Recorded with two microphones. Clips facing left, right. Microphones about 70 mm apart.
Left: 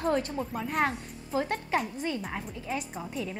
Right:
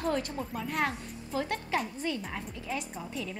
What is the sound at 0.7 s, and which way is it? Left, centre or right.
A woman's voice, centre.